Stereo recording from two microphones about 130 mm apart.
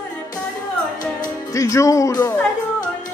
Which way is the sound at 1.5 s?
25° left (ahead or behind).